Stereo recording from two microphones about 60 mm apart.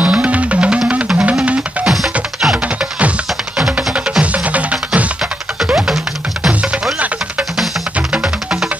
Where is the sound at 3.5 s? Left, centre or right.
Centre.